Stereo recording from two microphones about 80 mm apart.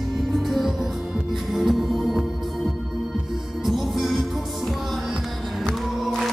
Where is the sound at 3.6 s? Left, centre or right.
Centre.